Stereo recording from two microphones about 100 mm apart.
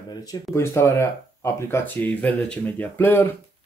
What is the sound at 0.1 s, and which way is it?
Speech, 40° left (ahead or behind).